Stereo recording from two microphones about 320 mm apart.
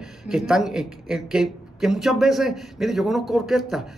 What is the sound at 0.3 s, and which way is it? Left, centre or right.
Speech, centre.